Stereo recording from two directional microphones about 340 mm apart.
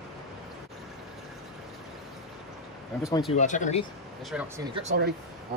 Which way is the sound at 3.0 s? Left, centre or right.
Centre.